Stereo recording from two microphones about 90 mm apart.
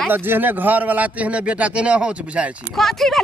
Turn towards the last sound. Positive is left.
turn(degrees=5)  # may be behind; listen again after turning